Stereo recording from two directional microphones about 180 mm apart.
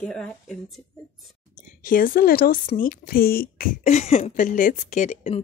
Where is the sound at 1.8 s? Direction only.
50° left (ahead or behind).